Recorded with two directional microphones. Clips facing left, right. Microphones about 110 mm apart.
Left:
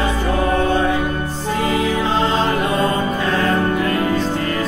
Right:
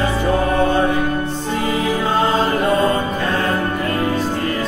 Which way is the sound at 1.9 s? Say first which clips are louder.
Right 1 dB; 15° right (ahead or behind).